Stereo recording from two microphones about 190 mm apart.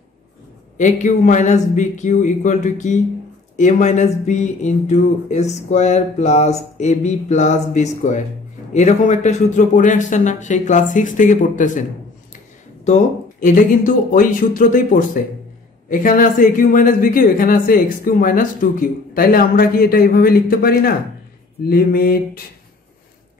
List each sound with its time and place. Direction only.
0.7 s speech: 40° left (ahead or behind)
12.8 s speech: 40° left (ahead or behind)